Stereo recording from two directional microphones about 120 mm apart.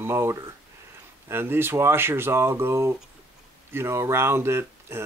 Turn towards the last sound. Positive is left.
turn(degrees=-20)  # may be behind; listen again after turning